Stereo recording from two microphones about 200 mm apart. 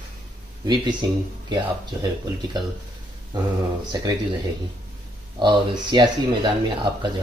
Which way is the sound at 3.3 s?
20° right (ahead or behind).